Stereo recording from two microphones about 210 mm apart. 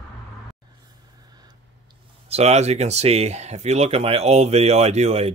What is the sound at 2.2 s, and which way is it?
Speech, 30° right (ahead or behind).